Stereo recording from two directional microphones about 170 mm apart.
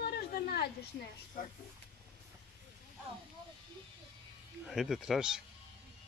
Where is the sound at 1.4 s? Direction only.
50° left (ahead or behind).